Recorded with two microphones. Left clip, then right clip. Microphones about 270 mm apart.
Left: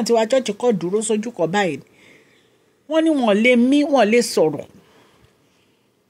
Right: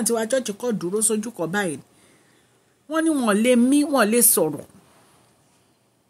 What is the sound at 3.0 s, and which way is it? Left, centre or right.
Speech, centre.